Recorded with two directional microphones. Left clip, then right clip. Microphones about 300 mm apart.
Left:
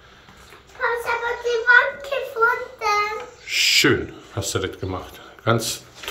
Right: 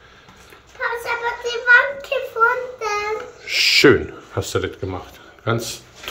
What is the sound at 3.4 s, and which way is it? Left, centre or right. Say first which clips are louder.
Speech: right 4 dB; centre.